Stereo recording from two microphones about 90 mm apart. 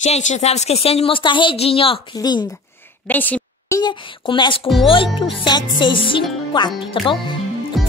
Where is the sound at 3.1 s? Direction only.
20° left (ahead or behind).